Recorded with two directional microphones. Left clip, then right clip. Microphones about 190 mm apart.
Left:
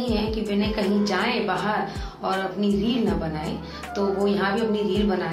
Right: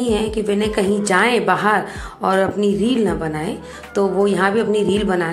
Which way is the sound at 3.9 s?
45° right (ahead or behind).